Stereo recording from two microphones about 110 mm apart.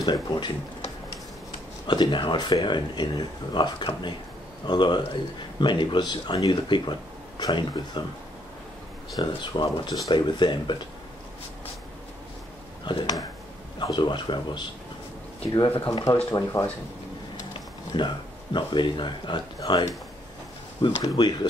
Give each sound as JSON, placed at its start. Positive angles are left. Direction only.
{"t": 0.0, "sound": "speech", "side_deg": 40}
{"t": 1.9, "sound": "a man's voice", "side_deg": 45}
{"t": 9.1, "sound": "a man's voice", "side_deg": 45}
{"t": 12.8, "sound": "a man's voice", "side_deg": 40}
{"t": 15.7, "sound": "a man's voice", "side_deg": 55}
{"t": 16.3, "sound": "speech", "side_deg": 35}
{"t": 17.9, "sound": "a man's voice", "side_deg": 45}
{"t": 21.0, "sound": "a man's voice", "side_deg": 40}